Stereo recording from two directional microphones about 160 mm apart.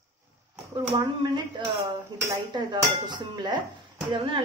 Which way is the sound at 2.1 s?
25° right (ahead or behind).